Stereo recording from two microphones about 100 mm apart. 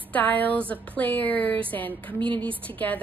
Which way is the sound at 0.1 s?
15° left (ahead or behind).